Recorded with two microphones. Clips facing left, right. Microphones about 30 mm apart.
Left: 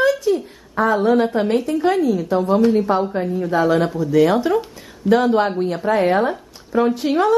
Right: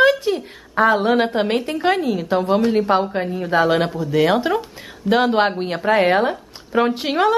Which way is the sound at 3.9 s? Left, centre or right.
Right.